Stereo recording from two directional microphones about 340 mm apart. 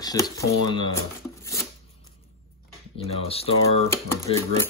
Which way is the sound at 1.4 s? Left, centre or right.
Centre.